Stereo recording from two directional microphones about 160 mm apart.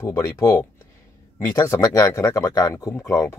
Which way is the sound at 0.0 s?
20° left (ahead or behind).